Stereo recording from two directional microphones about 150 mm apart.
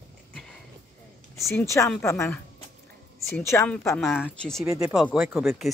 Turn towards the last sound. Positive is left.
turn(degrees=0)  # may be behind; listen again after turning